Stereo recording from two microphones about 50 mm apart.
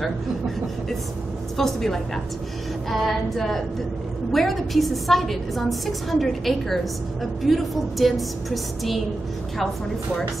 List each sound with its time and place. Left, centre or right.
1.6 s a woman's voice: centre